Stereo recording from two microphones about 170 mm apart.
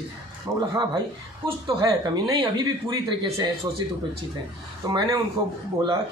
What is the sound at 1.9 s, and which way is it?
Speech, 25° right (ahead or behind).